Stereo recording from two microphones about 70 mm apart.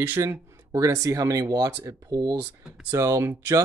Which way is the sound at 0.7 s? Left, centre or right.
Right.